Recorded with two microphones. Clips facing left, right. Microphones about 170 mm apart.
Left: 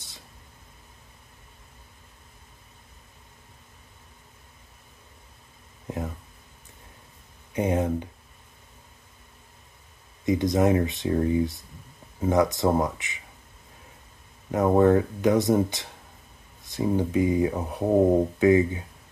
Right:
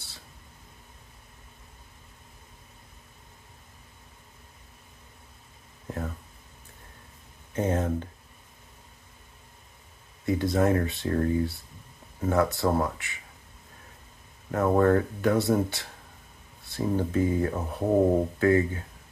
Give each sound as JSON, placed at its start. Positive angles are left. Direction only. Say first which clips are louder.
{"t": 5.9, "sound": "a sound", "louder": "left 2 dB", "side_deg": 20}
{"t": 7.5, "sound": "speech", "louder": "left 2 dB", "side_deg": 15}
{"t": 10.2, "sound": "speech", "louder": "left 2 dB", "side_deg": 20}
{"t": 14.5, "sound": "speech", "louder": "left 3 dB", "side_deg": 20}